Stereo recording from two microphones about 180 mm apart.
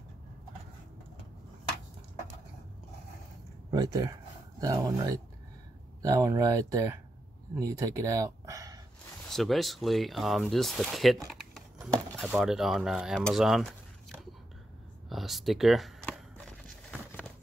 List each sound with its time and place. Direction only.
3.7 s speech: 20° right (ahead or behind)
9.3 s speech: centre (ahead or behind)
15.0 s a sound: centre (ahead or behind)